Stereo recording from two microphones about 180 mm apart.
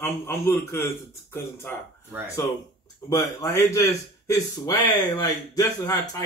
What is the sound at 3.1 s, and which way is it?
Speech, 20° left (ahead or behind).